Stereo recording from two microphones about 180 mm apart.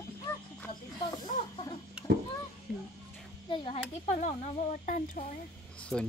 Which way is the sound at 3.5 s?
30° left (ahead or behind).